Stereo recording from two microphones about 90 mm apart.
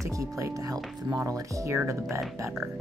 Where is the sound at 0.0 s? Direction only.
35° right (ahead or behind).